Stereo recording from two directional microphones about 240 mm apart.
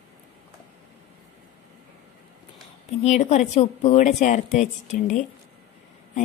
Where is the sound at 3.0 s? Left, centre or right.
Left.